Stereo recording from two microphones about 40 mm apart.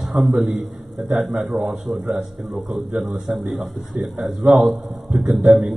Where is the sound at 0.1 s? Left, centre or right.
Right.